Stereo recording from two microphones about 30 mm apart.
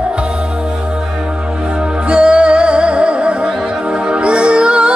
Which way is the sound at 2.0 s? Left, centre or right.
Right.